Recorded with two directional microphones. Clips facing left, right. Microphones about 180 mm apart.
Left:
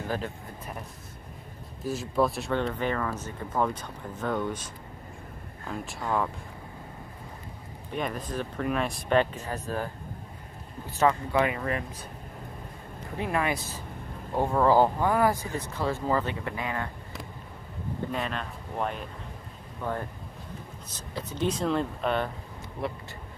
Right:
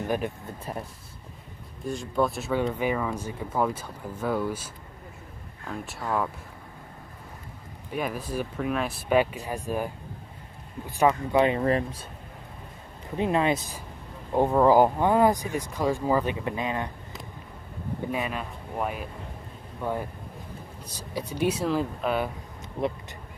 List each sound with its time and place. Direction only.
1.8 s speech: 5° left (ahead or behind)
5.7 s speech: centre (ahead or behind)
7.9 s speech: 5° right (ahead or behind)
11.0 s speech: 20° right (ahead or behind)
13.2 s speech: 20° right (ahead or behind)
18.1 s speech: 5° right (ahead or behind)
22.8 s speech: 20° right (ahead or behind)